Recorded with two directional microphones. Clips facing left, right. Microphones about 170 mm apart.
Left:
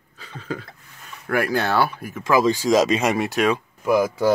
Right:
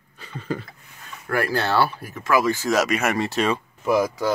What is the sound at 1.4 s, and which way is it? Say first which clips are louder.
Speech: left 1 dB; 15° left (ahead or behind).